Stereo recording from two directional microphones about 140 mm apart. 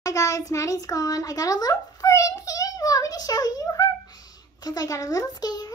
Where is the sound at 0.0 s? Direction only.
25° left (ahead or behind).